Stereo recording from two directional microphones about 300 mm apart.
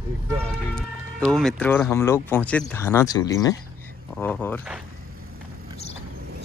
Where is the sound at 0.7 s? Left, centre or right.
Centre.